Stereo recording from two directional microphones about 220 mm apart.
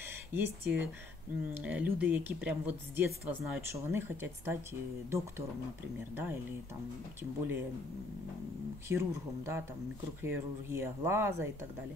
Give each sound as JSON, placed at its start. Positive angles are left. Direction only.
{"t": 0.0, "sound": "a woman's voice", "side_deg": -10}
{"t": 6.1, "sound": "a woman's voice", "side_deg": -10}
{"t": 8.8, "sound": "a woman's voice", "side_deg": -10}